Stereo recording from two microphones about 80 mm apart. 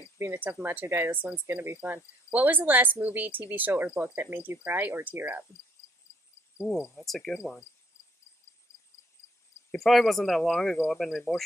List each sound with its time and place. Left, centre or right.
0.2 s speech: right
6.6 s speech: centre
9.8 s speech: centre